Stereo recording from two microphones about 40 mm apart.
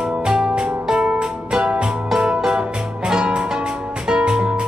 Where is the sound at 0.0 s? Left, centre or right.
Right.